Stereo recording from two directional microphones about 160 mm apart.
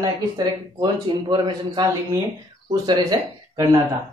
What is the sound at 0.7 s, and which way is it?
Speech, 30° right (ahead or behind).